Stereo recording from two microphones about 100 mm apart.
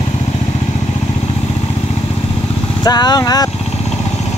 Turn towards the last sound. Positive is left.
turn(degrees=40)  # may be behind; listen again after turning